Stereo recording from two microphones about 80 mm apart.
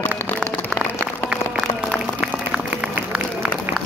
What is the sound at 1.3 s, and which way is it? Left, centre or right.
Applause, centre.